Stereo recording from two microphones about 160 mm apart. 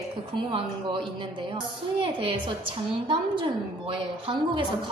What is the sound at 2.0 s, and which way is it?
A woman's voice, 30° right (ahead or behind).